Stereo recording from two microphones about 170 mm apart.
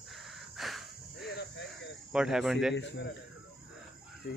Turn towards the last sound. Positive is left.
turn(degrees=90)